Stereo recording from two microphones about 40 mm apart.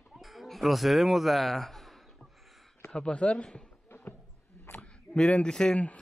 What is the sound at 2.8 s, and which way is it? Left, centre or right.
Speech, left.